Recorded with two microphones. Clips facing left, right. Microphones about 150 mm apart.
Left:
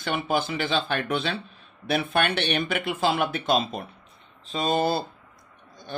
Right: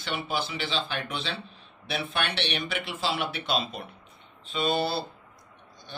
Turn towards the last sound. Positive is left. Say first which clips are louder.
# left 3 dB
turn(degrees=45)  # may be behind; listen again after turning